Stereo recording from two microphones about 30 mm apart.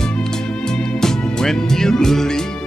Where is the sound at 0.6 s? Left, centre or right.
Centre.